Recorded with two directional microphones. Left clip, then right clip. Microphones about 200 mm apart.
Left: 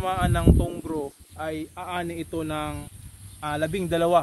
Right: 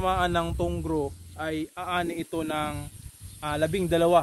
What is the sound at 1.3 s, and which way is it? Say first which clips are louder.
Speech: left 1 dB; 40° right (ahead or behind).